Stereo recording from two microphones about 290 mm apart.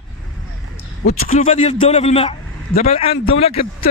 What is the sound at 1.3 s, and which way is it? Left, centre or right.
A man's voice, left.